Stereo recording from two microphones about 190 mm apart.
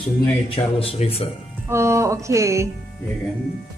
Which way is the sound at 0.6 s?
30° left (ahead or behind).